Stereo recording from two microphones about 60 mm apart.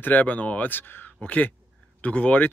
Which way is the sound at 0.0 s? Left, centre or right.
Left.